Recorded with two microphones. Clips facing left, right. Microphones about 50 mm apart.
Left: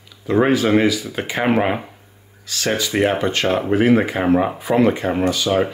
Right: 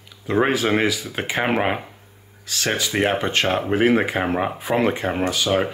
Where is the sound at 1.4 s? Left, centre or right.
Centre.